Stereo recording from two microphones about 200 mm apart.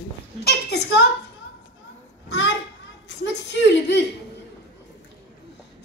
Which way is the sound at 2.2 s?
65° left (ahead or behind).